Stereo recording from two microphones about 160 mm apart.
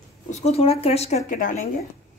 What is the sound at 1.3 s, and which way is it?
Speech, 55° left (ahead or behind).